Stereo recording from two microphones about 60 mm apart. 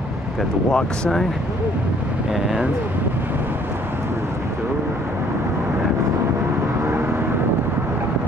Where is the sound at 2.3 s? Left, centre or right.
Centre.